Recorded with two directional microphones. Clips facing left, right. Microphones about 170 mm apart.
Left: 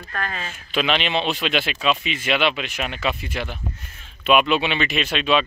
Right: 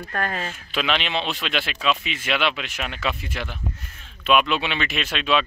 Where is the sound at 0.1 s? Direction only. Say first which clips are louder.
Right 2 dB; 45° right (ahead or behind).